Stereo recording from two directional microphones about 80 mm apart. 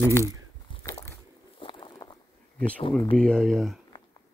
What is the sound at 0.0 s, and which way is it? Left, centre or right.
Speech, left.